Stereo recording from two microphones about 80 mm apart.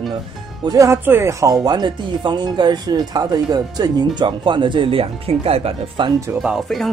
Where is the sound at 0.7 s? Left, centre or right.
Right.